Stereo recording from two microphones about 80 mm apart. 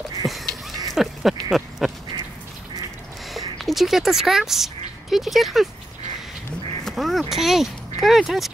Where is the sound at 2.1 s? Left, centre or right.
Right.